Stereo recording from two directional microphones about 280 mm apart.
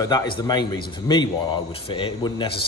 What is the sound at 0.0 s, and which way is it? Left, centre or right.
A man's voice, centre.